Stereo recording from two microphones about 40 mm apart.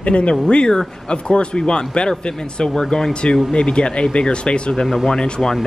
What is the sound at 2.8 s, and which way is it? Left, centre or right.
Speech, centre.